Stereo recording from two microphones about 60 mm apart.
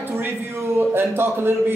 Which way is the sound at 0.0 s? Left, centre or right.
Right.